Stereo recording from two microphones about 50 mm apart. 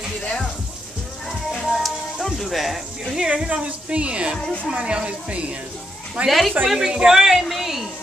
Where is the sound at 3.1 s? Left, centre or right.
Centre.